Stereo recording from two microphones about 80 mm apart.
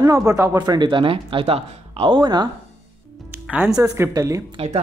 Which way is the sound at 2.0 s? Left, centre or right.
Right.